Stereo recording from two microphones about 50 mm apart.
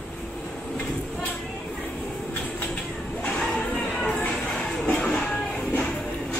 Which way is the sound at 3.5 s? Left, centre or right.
Left.